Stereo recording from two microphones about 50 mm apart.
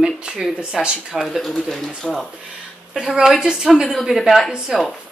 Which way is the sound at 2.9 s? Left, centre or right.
Centre.